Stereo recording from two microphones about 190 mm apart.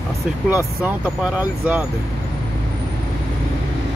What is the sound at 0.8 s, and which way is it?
Speech, 5° right (ahead or behind).